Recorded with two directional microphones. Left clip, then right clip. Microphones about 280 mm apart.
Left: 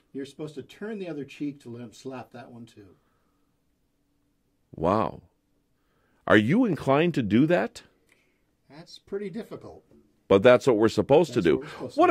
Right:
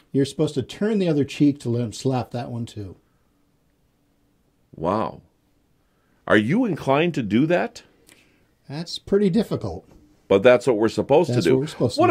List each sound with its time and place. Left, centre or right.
0.1 s speech: centre
4.7 s speech: left
6.5 s speech: left
8.6 s speech: centre
10.2 s speech: left